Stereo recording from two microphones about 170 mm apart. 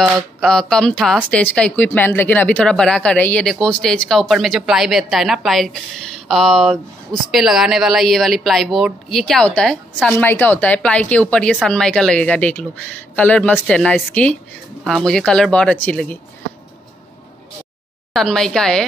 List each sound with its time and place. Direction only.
0.0 s speech: centre (ahead or behind)
18.1 s speech: 5° left (ahead or behind)